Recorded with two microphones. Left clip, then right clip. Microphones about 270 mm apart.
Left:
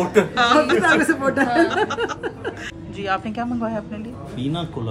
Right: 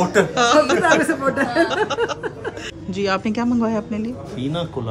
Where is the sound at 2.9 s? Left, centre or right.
Right.